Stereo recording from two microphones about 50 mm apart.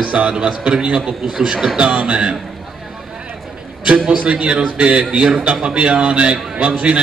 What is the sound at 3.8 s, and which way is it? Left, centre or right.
A man's voice, right.